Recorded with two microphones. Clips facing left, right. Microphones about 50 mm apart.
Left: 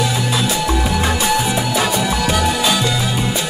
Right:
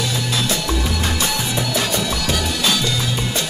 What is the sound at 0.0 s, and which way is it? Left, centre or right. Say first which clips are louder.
Music: left 4 dB; centre.